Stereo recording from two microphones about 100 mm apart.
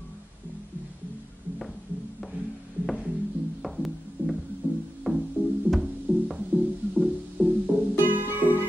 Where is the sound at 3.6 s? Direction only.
Centre (ahead or behind).